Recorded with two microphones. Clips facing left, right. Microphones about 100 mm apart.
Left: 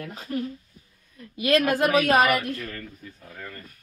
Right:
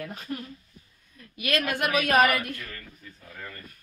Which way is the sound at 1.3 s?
30° left (ahead or behind).